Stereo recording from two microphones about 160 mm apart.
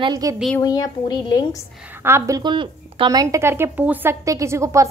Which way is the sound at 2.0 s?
15° right (ahead or behind).